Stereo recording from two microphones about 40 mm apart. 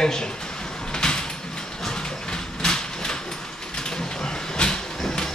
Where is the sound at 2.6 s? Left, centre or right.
Centre.